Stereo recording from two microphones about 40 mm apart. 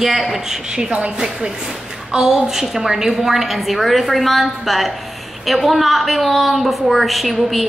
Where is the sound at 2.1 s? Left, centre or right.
Centre.